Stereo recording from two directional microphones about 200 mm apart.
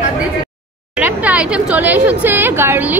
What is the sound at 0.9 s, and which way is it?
A woman's voice, 5° right (ahead or behind).